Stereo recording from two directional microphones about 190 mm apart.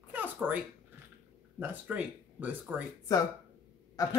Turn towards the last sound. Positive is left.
turn(degrees=20)  # may be behind; listen again after turning